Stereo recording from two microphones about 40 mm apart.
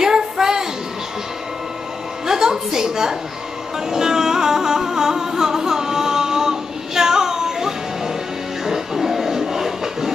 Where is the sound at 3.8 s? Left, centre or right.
Centre.